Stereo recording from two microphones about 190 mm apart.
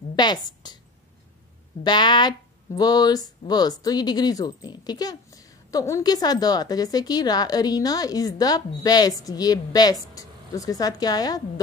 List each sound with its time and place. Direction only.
0.1 s a woman's voice: 20° left (ahead or behind)
1.8 s speech: 25° left (ahead or behind)